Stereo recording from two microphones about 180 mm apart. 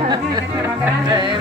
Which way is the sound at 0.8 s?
25° right (ahead or behind).